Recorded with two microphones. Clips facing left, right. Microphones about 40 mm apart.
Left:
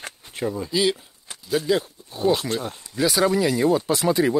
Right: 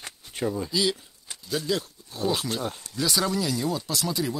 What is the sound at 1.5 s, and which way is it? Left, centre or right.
Speech, centre.